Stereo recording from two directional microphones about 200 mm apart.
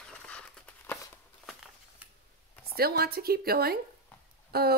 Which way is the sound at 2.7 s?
50° right (ahead or behind).